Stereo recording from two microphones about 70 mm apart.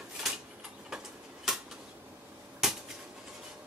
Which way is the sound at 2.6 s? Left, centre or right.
Centre.